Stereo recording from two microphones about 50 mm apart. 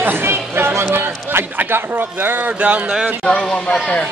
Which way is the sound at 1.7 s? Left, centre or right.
Right.